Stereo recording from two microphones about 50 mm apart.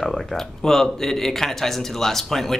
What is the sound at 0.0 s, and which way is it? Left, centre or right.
Speech, centre.